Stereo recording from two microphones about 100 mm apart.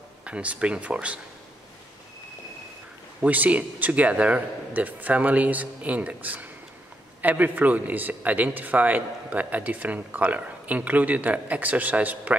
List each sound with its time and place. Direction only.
0.2 s a man's voice: 10° right (ahead or behind)
3.2 s a man's voice: 15° right (ahead or behind)